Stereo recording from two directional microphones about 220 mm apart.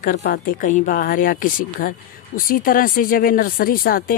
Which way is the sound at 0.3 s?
40° left (ahead or behind).